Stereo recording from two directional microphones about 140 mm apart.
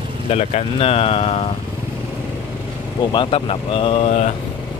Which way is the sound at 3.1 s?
40° left (ahead or behind).